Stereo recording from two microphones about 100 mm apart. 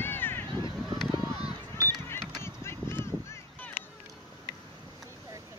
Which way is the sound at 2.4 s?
25° left (ahead or behind).